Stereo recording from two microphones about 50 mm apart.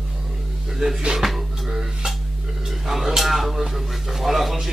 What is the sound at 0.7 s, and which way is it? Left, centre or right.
Speech, centre.